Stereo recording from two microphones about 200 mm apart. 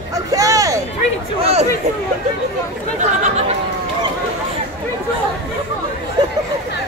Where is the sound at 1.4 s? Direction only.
30° right (ahead or behind).